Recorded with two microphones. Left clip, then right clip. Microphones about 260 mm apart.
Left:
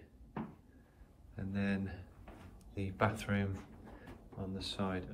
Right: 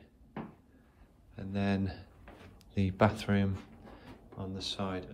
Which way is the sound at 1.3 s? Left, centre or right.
Centre.